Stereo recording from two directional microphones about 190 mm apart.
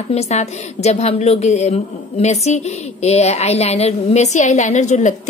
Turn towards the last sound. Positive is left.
turn(degrees=40)  # may be behind; listen again after turning